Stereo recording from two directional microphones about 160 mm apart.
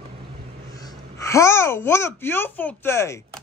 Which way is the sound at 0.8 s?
20° left (ahead or behind).